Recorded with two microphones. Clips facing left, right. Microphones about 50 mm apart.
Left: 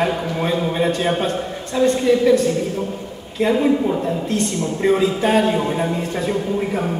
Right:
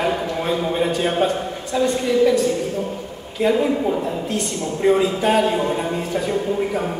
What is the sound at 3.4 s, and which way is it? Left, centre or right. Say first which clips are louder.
A man's voice: left 1 dB; centre.